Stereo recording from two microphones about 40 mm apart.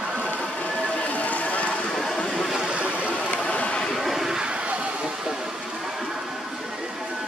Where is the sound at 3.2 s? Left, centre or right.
Left.